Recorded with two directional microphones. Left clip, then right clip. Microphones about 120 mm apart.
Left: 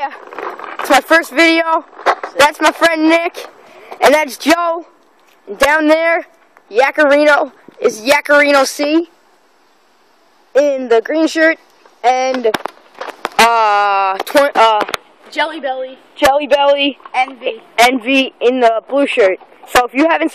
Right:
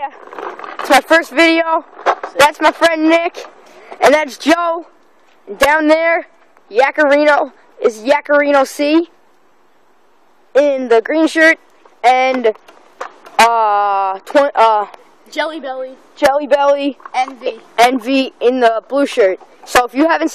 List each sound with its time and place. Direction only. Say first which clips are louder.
0.0 s vehicle: left 3 dB; 15° left (ahead or behind)
0.6 s vehicle: left 1 dB; 30° right (ahead or behind)
0.8 s a woman's voice: even; centre (ahead or behind)
8.6 s speech: right 1 dB; 15° right (ahead or behind)
10.5 s speech: even; 15° right (ahead or behind)
13.0 s a sound: left 2 dB; 40° right (ahead or behind)
13.4 s a sound: left 1 dB; centre (ahead or behind)
14.5 s speech: even; 15° right (ahead or behind)
15.2 s a woman's voice: left 1 dB; 60° right (ahead or behind)
16.3 s a woman's voice: left 1 dB; 15° right (ahead or behind)